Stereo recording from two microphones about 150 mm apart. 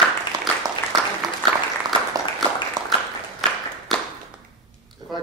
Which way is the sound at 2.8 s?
25° right (ahead or behind).